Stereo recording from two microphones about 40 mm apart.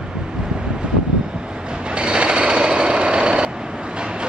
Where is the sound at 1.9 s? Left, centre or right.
Right.